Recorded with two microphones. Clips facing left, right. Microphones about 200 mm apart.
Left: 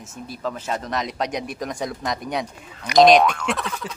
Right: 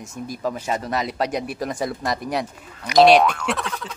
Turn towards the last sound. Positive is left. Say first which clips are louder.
# even
turn(degrees=0)  # may be behind; listen again after turning